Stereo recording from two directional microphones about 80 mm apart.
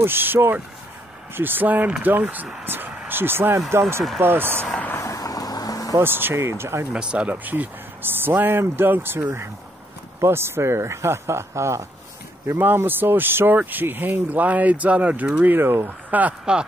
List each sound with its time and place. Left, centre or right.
0.0 s speech: right
4.6 s vehicle: centre
4.9 s vehicle: left
5.9 s speech: right
6.9 s speech: centre